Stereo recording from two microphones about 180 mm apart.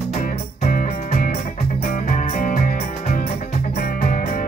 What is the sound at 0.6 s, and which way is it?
Music, 45° left (ahead or behind).